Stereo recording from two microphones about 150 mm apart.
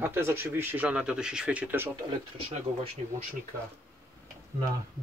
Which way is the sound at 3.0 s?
55° right (ahead or behind).